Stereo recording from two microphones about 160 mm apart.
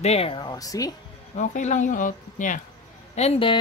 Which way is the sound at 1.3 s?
50° left (ahead or behind).